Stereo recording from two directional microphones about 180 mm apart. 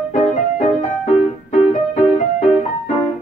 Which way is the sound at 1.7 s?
40° left (ahead or behind).